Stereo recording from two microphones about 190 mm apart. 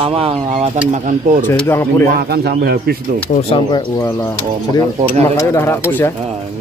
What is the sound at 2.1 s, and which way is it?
Speech, 55° right (ahead or behind).